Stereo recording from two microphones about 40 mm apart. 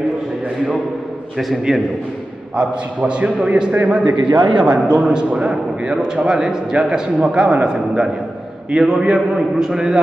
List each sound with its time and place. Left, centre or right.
1.4 s a man's voice: centre
2.5 s a man's voice: right